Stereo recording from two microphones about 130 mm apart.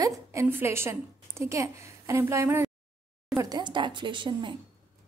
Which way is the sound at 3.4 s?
30° right (ahead or behind).